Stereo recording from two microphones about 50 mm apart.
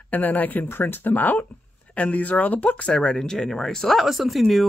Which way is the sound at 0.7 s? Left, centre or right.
Left.